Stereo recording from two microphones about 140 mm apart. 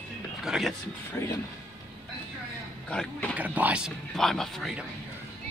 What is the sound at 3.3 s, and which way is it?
Speech, 10° right (ahead or behind).